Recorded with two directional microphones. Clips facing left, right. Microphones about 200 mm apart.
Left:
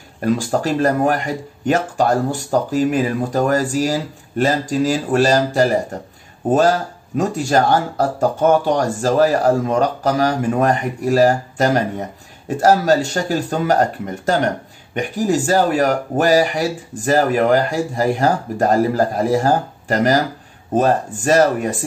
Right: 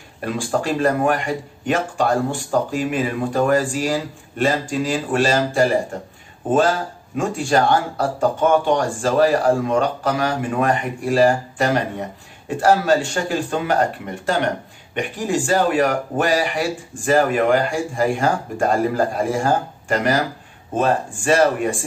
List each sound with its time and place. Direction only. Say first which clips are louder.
0.2 s speech: left 4 dB; 40° left (ahead or behind)
7.2 s speech: left 2 dB; 40° left (ahead or behind)